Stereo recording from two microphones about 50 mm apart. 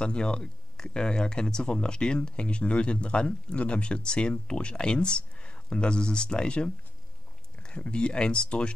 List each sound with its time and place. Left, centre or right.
0.0 s speech: centre